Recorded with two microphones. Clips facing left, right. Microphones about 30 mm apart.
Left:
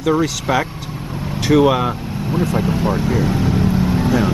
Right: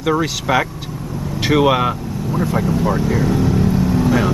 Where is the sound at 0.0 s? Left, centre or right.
Centre.